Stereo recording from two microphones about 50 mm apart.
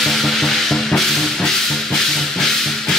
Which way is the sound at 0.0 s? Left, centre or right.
Centre.